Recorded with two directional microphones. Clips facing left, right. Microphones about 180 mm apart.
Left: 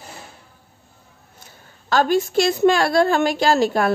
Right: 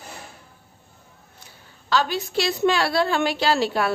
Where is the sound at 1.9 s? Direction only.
50° left (ahead or behind).